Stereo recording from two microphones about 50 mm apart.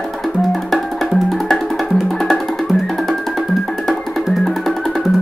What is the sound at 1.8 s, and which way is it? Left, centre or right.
Music, centre.